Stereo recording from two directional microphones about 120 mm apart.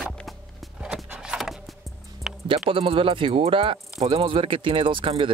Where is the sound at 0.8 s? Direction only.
5° right (ahead or behind).